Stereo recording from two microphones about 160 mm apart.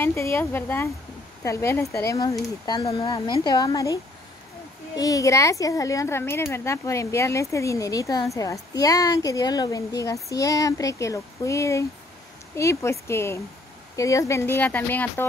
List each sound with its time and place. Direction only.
0.0 s speech: 15° left (ahead or behind)